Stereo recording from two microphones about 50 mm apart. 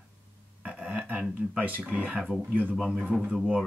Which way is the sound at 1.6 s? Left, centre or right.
Right.